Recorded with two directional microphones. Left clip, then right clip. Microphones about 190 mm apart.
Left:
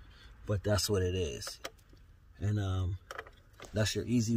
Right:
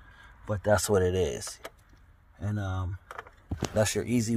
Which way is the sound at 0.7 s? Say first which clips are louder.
Right 8 dB; 20° right (ahead or behind).